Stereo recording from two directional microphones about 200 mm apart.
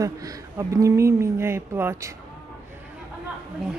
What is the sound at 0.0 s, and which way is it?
Speech, 15° right (ahead or behind).